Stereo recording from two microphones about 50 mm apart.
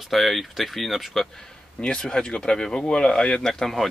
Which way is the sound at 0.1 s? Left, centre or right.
Centre.